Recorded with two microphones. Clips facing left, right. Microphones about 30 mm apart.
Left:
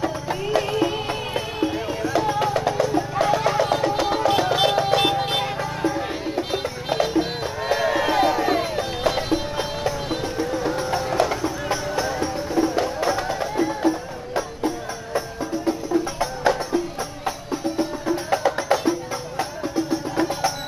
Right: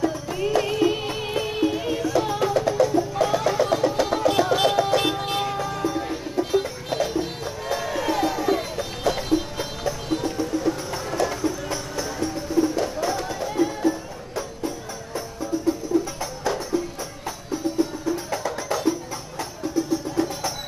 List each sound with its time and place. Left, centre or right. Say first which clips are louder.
0.6 s music: right 1 dB; centre; by 20.5 s left